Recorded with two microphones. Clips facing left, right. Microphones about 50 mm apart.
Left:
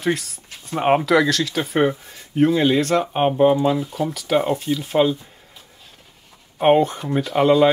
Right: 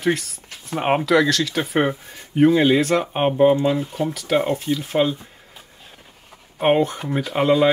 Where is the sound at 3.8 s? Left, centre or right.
Centre.